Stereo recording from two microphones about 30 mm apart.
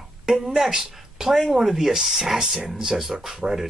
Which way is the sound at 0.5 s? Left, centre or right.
Centre.